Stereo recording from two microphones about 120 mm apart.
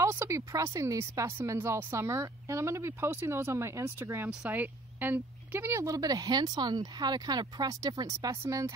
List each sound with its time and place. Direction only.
0.0 s speech: 25° right (ahead or behind)